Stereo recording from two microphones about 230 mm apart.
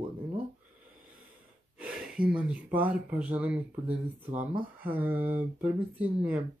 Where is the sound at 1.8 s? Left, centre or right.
Centre.